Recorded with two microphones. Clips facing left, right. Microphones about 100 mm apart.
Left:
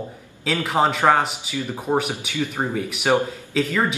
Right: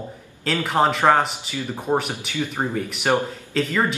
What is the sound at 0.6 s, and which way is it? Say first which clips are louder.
Speech: even; centre (ahead or behind).